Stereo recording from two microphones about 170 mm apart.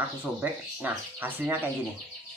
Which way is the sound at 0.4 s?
10° right (ahead or behind).